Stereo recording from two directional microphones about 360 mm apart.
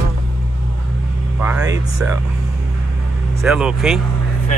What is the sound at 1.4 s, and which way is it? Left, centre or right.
Speech, centre.